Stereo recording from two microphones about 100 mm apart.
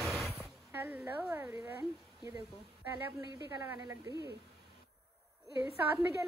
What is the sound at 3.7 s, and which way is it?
Speech, 30° right (ahead or behind).